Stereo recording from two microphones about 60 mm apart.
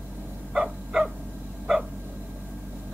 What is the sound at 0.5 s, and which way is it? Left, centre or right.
Dog, centre.